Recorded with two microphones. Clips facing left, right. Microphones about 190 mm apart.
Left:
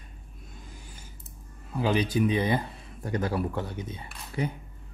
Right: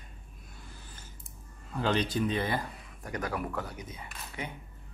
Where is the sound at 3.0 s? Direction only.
30° left (ahead or behind).